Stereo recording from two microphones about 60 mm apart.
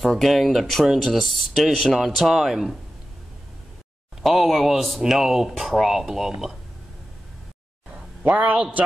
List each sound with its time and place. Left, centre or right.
0.0 s speech: centre
4.2 s speech: centre
8.2 s a man's voice: right